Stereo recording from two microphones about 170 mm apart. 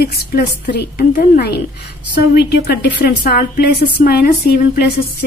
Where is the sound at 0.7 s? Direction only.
65° left (ahead or behind).